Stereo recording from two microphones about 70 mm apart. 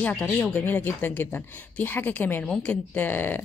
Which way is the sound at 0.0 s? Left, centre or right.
Centre.